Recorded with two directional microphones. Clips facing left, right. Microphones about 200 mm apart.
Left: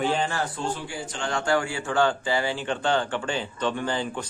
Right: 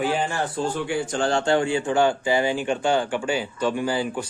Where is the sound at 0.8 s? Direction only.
55° right (ahead or behind).